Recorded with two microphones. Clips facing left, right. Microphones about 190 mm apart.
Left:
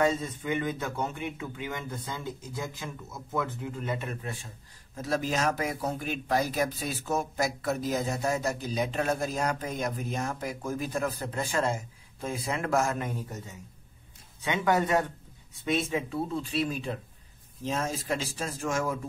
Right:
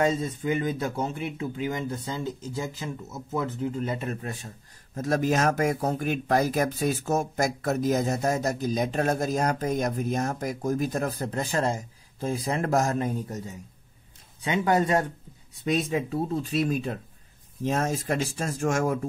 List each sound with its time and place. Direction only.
0.0 s speech: 35° right (ahead or behind)
3.3 s speech: 35° right (ahead or behind)